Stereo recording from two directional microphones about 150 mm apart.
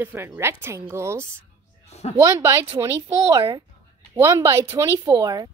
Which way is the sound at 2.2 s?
20° right (ahead or behind).